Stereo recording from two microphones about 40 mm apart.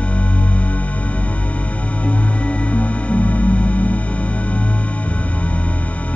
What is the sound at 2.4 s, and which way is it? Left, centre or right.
Music, left.